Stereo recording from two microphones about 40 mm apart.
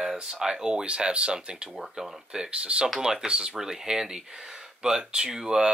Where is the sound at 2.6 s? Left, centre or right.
Right.